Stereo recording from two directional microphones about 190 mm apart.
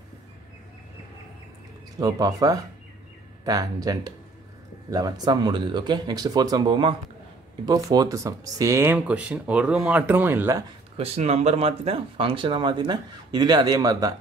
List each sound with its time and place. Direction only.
2.0 s speech: 20° right (ahead or behind)
11.0 s speech: 30° right (ahead or behind)